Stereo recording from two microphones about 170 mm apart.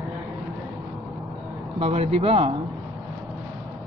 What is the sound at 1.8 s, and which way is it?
Speech, 35° right (ahead or behind).